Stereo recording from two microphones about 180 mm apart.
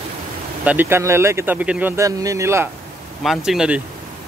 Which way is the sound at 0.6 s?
10° right (ahead or behind).